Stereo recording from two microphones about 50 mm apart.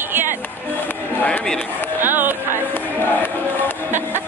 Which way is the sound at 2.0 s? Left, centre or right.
Right.